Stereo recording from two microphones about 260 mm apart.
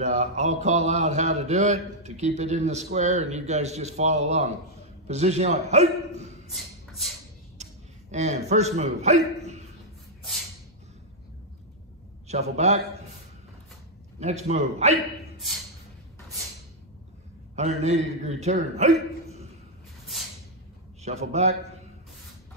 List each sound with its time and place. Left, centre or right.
0.0 s a man's voice: right
6.5 s shuffle: centre
7.6 s a sound: right
8.1 s a man's voice: right
12.3 s a man's voice: right
14.2 s a man's voice: right
17.6 s a man's voice: right
20.1 s a sound: centre
21.0 s a man's voice: right